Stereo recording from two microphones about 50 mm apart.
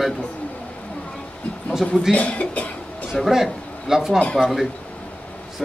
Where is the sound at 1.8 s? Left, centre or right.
Centre.